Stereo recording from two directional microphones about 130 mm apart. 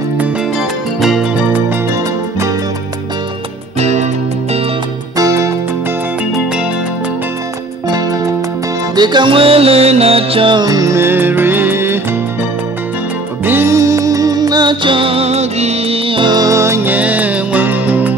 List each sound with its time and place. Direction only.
1.0 s music: 5° right (ahead or behind)
3.8 s music: 60° right (ahead or behind)
5.1 s music: 25° right (ahead or behind)
8.9 s music: 35° right (ahead or behind); by 12.0 s 15° right (ahead or behind)
13.5 s music: 20° right (ahead or behind)